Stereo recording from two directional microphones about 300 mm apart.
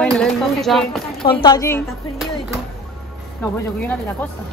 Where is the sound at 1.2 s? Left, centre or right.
Centre.